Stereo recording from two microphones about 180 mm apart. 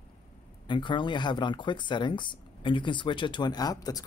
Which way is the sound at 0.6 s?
25° left (ahead or behind).